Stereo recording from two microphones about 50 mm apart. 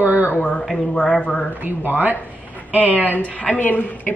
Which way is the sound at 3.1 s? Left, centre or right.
Left.